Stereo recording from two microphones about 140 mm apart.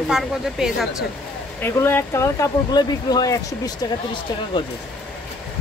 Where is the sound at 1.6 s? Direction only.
15° left (ahead or behind).